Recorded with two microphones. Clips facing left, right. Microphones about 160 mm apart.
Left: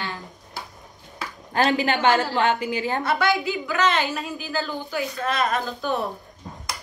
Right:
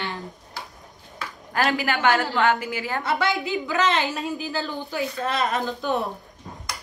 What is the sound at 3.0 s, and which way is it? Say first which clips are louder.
A woman's voice: left 1 dB; 20° right (ahead or behind).